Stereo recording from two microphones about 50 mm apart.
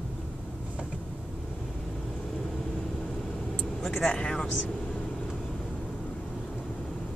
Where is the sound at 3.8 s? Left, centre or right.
Centre.